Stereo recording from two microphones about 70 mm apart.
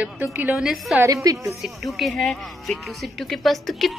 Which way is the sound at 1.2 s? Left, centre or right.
Right.